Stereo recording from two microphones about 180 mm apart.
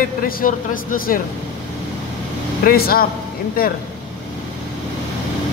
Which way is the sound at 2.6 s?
55° left (ahead or behind).